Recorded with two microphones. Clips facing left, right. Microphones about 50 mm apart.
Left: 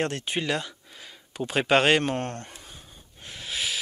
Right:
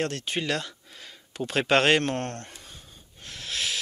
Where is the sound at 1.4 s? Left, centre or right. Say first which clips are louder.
Left 1 dB; centre.